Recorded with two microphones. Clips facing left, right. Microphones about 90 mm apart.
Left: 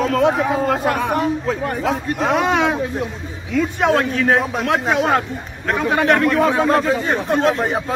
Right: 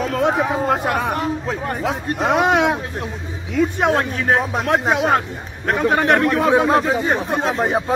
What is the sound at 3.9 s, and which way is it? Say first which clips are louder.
Speech: left 2 dB; 25° right (ahead or behind).